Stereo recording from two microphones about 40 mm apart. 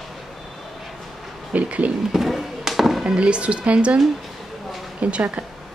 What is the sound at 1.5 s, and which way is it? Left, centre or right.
Speech, right.